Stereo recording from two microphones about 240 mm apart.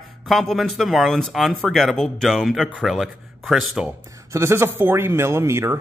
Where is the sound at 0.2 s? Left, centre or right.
Centre.